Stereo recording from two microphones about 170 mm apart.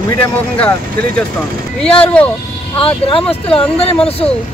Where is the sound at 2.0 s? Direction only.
10° left (ahead or behind).